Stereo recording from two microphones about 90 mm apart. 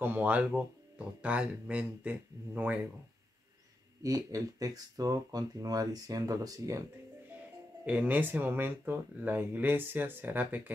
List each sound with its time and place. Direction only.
0.0 s speech: 20° right (ahead or behind)
4.0 s speech: 40° right (ahead or behind)
7.8 s speech: 15° right (ahead or behind)